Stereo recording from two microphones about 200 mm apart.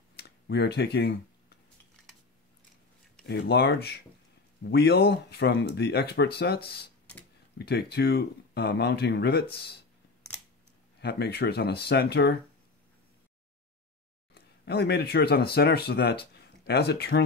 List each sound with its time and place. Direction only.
0.1 s speech: 55° left (ahead or behind)
3.3 s speech: 55° left (ahead or behind)
11.0 s speech: 55° left (ahead or behind)
14.3 s speech: 55° left (ahead or behind)